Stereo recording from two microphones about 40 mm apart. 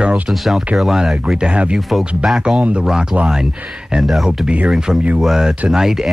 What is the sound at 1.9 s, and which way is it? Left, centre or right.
Speech, centre.